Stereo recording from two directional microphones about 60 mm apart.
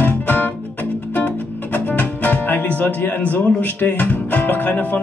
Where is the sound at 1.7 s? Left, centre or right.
Left.